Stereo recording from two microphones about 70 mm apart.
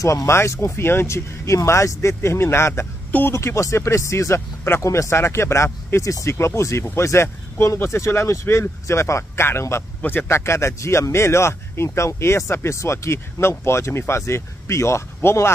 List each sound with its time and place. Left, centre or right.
0.0 s speech: left